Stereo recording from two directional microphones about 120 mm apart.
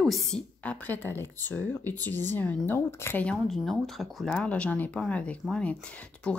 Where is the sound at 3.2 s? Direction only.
Centre (ahead or behind).